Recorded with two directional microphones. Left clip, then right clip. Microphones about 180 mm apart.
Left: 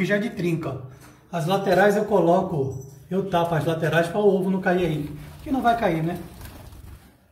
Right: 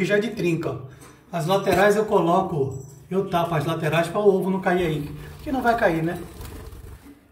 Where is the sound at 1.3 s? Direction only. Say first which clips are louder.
Even; 20° right (ahead or behind).